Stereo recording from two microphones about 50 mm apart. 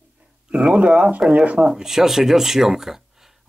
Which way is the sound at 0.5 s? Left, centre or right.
Right.